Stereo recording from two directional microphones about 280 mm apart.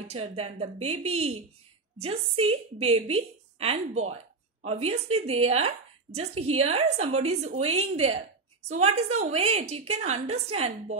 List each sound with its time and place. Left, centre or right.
0.4 s a woman's voice: right